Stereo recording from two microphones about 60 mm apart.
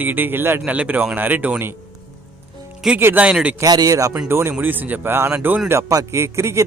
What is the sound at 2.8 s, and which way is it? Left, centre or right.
Speech, centre.